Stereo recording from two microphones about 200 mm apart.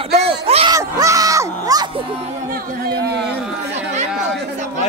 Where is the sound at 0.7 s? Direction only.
15° right (ahead or behind).